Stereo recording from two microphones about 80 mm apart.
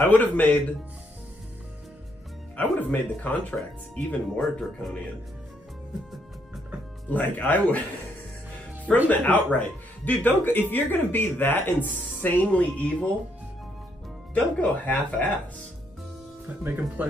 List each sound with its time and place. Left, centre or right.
0.0 s speech: left
2.5 s speech: left
4.4 s speech: centre
7.1 s speech: left
9.1 s speech: centre
14.3 s speech: centre
16.4 s speech: right